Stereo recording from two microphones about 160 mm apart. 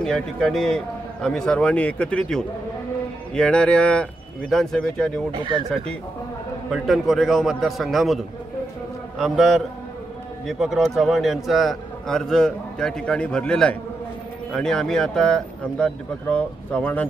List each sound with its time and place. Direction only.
0.0 s a man's voice: 5° left (ahead or behind)
5.3 s speech: 30° right (ahead or behind)
6.7 s a man's voice: centre (ahead or behind)